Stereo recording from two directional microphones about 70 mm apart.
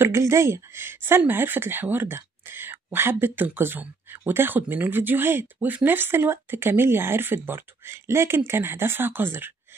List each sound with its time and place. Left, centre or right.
0.0 s speech: right